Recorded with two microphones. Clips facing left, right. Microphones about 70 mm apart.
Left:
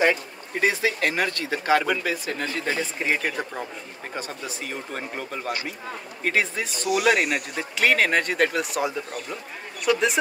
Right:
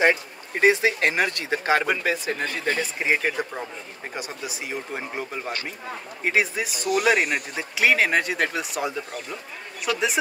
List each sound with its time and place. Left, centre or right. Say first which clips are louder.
0.0 s speech: right 1 dB; right
2.4 s speech: even; right
3.0 s speech: right 2 dB; centre